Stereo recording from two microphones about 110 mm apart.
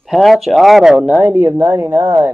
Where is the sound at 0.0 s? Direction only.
Centre (ahead or behind).